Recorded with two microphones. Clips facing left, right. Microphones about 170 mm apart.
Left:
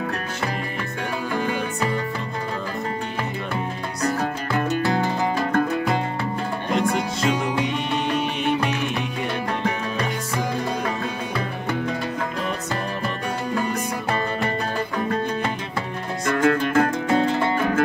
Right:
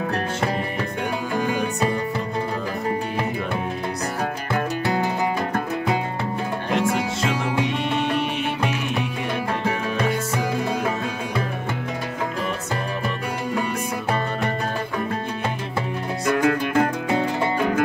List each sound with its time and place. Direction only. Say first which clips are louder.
1.4 s music: right 4 dB; 15° right (ahead or behind)
4.2 s music: left 1 dB; 10° right (ahead or behind)
9.9 s music: right 3 dB; 5° right (ahead or behind)
16.3 s music: left 1 dB; 10° right (ahead or behind)